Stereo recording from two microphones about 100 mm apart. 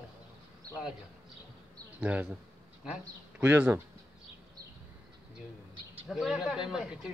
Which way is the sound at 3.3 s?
15° right (ahead or behind).